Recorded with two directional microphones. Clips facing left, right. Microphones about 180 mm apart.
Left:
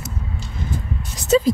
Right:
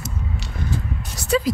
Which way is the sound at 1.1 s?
25° left (ahead or behind).